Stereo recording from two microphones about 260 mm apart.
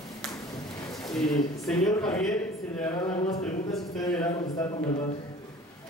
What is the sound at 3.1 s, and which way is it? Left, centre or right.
Speech, left.